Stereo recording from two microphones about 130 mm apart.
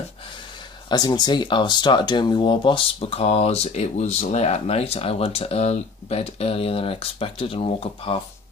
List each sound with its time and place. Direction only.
0.8 s speech: 35° left (ahead or behind)